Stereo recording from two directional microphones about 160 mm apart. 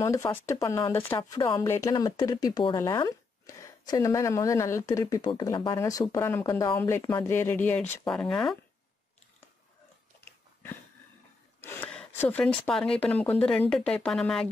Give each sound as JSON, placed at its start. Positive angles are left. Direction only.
{"t": 0.0, "sound": "speech", "side_deg": 20}
{"t": 1.1, "sound": "speech", "side_deg": 25}
{"t": 10.2, "sound": "a sound", "side_deg": 15}
{"t": 11.6, "sound": "gasp", "side_deg": 10}
{"t": 12.2, "sound": "speech", "side_deg": 10}